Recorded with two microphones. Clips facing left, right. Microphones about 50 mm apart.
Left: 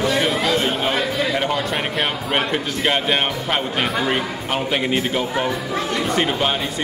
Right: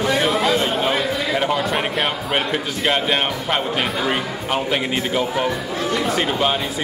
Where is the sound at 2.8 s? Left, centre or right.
Centre.